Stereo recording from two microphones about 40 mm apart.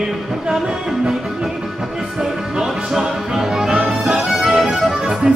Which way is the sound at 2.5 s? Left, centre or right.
Centre.